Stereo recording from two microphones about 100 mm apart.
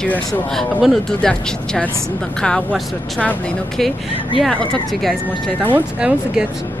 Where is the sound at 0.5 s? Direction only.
Centre (ahead or behind).